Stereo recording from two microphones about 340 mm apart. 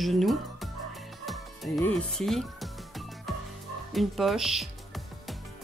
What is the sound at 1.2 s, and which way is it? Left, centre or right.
Speech, centre.